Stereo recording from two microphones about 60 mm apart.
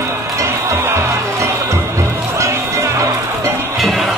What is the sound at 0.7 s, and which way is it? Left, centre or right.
Music, right.